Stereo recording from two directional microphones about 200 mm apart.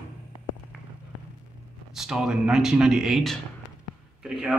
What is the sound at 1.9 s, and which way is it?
Speech, centre (ahead or behind).